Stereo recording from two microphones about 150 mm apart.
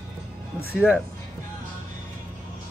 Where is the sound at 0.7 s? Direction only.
5° right (ahead or behind).